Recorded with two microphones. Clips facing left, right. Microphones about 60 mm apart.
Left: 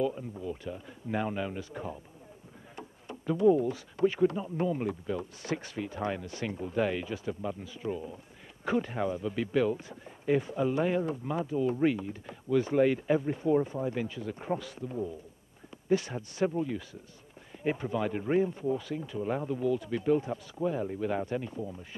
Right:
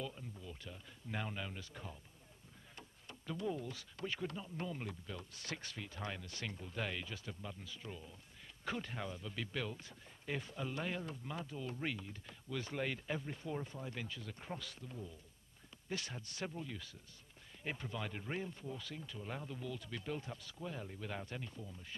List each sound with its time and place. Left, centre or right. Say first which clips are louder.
0.0 s speech: left 15 dB; left
3.1 s speech: left 17 dB; centre